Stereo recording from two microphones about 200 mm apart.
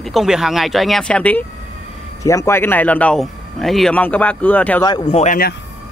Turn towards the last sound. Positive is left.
turn(degrees=30)  # may be behind; listen again after turning